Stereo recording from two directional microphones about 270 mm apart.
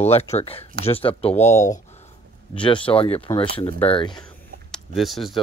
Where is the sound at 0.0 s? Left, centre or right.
Left.